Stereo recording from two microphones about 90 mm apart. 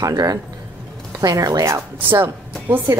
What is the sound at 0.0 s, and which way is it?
A woman's voice, 45° right (ahead or behind).